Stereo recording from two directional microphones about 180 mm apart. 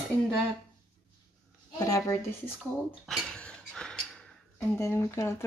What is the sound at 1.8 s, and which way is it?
Speech, 20° left (ahead or behind).